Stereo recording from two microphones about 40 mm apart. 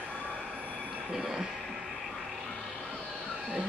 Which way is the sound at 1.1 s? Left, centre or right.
Centre.